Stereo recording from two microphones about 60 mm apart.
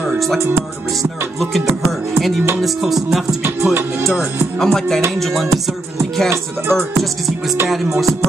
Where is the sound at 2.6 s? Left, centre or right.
Centre.